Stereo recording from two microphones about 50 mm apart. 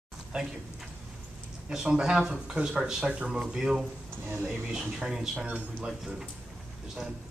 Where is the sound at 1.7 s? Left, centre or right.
Centre.